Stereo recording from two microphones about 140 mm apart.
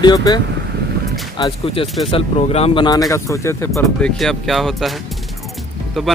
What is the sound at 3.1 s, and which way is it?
Speech, 20° left (ahead or behind).